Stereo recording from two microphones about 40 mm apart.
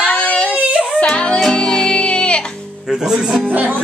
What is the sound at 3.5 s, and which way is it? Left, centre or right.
Speech, right.